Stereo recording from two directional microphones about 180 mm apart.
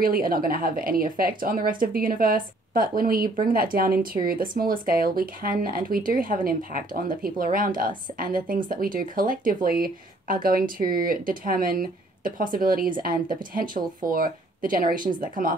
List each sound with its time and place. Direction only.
0.0 s a woman's voice: 55° right (ahead or behind)